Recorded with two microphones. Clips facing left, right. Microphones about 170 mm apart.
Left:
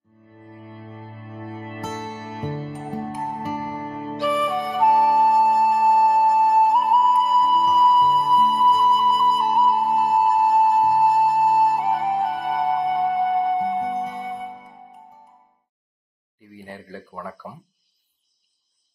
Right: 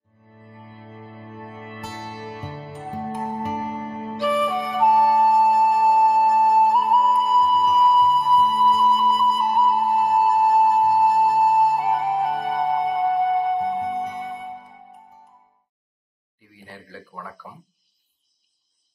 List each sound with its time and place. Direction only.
0.7 s music: 35° left (ahead or behind)
3.0 s music: 20° right (ahead or behind)
4.2 s flute: centre (ahead or behind)
16.9 s a sound: 10° left (ahead or behind)